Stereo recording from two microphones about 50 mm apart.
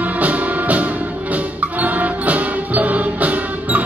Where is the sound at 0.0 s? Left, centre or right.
Right.